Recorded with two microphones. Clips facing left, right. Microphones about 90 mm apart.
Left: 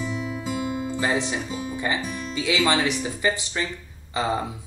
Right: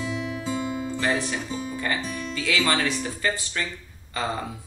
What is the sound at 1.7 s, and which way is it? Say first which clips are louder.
Speech: left 2 dB; 15° left (ahead or behind).